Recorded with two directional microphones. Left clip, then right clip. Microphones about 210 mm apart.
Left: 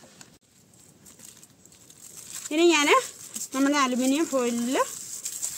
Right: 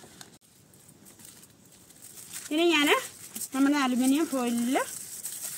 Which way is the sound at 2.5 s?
30° left (ahead or behind).